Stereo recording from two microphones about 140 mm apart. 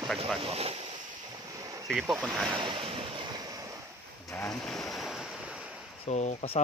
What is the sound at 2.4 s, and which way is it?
Waves, 35° right (ahead or behind).